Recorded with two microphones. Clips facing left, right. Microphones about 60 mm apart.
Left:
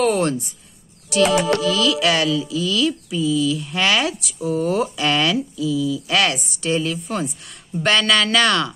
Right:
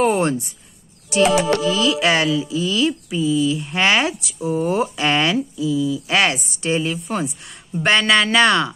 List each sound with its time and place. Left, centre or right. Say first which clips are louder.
0.0 s speech: right 1 dB; right
1.1 s music: right 1 dB; right